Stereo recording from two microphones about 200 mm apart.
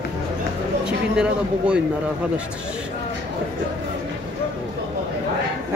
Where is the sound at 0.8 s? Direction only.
5° right (ahead or behind).